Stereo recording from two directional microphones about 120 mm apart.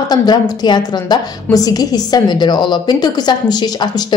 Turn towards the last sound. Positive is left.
turn(degrees=35)  # may be behind; listen again after turning